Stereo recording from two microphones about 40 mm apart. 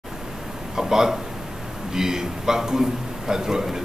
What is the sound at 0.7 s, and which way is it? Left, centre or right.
A man's voice, centre.